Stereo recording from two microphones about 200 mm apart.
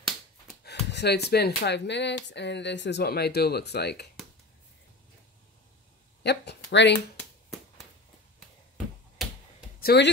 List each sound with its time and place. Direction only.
0.7 s speech: 55° left (ahead or behind)
6.2 s a sound: 55° left (ahead or behind)
9.8 s speech: 55° left (ahead or behind)